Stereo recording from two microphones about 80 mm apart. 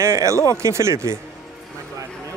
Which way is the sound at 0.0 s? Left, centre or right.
Right.